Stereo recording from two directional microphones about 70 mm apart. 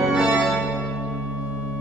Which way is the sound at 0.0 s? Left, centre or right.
Centre.